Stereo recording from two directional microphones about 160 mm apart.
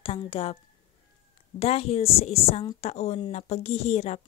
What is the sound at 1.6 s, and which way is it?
A woman's voice, 40° left (ahead or behind).